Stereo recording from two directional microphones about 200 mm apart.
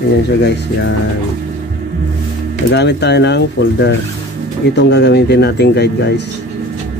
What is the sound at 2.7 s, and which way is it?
Speech, 60° left (ahead or behind).